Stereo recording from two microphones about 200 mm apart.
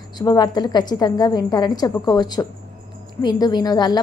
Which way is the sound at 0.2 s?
20° left (ahead or behind).